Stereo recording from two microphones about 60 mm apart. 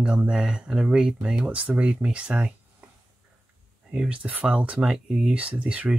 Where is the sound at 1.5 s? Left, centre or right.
Right.